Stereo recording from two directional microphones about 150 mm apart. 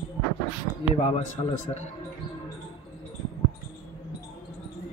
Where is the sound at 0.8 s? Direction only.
45° left (ahead or behind).